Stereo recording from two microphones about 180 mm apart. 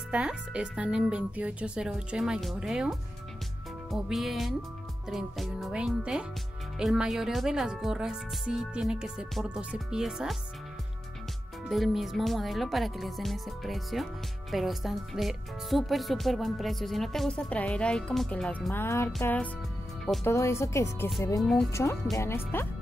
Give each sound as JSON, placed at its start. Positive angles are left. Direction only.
{"t": 0.1, "sound": "speech", "side_deg": -5}
{"t": 11.7, "sound": "speech", "side_deg": 0}
{"t": 21.4, "sound": "speech", "side_deg": 5}
{"t": 22.1, "sound": "speech", "side_deg": 15}